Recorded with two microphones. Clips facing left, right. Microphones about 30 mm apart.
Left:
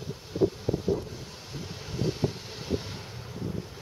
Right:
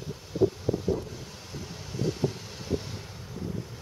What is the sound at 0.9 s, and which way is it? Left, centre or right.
Wind noise, centre.